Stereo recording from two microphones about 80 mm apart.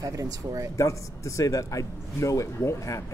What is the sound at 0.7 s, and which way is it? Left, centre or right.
A man's voice, left.